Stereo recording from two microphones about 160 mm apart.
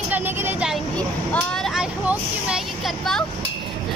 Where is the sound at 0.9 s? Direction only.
5° left (ahead or behind).